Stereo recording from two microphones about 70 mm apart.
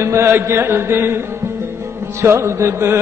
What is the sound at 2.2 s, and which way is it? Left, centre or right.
Chant, right.